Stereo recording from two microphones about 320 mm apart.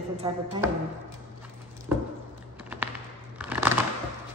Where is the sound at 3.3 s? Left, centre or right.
Centre.